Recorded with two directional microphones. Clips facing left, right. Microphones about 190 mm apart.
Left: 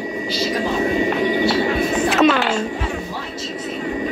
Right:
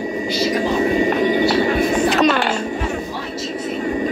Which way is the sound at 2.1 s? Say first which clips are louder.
Left 1 dB; centre (ahead or behind).